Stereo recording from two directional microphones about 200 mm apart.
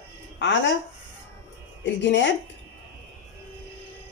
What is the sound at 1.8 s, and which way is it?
Speech, 60° left (ahead or behind).